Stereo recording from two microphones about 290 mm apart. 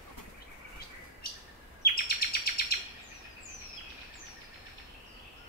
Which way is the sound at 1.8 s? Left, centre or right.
Left.